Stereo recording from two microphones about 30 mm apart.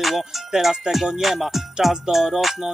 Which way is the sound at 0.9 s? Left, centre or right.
Right.